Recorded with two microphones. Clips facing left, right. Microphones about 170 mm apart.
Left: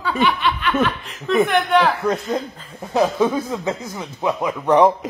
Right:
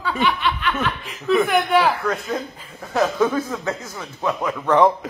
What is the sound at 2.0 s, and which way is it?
Speech, 20° left (ahead or behind).